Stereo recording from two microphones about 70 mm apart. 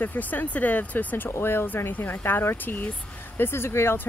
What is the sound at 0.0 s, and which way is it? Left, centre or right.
Speech, left.